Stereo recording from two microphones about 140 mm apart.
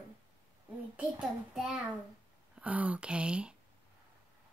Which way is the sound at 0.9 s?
10° right (ahead or behind).